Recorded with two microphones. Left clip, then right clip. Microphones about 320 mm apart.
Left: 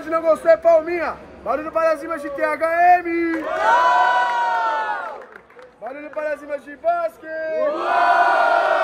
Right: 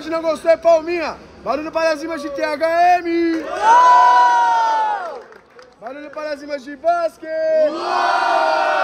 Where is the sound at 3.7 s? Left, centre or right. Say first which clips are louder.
Right 6 dB; right.